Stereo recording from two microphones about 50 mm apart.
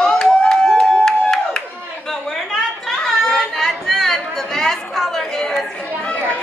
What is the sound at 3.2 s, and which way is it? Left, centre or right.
Chatter, centre.